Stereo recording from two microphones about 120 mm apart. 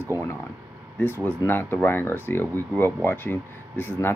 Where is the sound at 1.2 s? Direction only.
20° left (ahead or behind).